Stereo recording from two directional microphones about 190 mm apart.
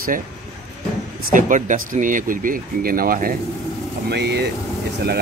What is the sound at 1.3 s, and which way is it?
Speech, 40° right (ahead or behind).